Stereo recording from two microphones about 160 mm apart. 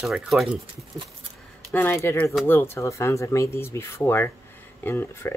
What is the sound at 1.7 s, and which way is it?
Speech, 15° left (ahead or behind).